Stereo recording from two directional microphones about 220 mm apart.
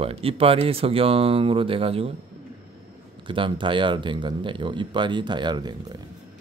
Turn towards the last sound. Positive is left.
turn(degrees=-20)  # may be behind; listen again after turning